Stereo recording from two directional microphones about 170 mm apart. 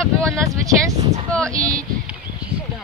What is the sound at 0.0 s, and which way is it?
Vehicle, 5° left (ahead or behind).